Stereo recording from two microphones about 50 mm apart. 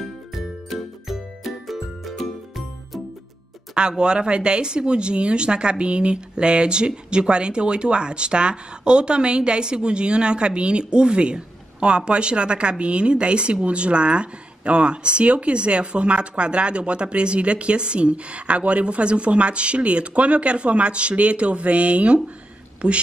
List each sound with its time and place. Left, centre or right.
0.3 s music: centre
3.7 s speech: centre